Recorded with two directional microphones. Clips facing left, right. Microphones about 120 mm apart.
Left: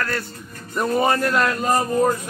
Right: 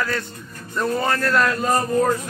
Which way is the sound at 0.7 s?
15° left (ahead or behind).